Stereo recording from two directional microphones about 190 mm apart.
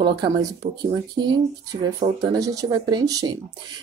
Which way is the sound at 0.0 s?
25° right (ahead or behind).